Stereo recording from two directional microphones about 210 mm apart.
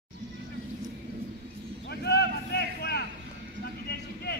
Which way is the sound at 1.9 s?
50° left (ahead or behind).